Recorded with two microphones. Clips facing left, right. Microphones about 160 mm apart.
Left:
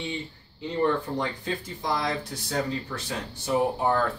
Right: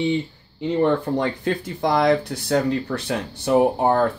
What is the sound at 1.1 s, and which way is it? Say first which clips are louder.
Speech: right 7 dB; 65° right (ahead or behind).